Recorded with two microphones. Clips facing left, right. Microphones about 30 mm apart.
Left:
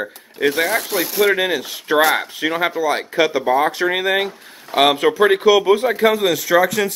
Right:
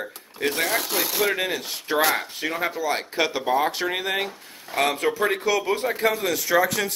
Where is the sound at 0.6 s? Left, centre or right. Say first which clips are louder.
Left 5 dB; left.